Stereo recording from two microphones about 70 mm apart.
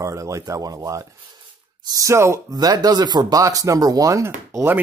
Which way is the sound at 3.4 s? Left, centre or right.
Right.